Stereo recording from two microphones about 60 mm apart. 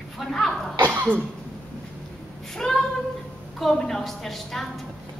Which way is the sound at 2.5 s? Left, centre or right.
Centre.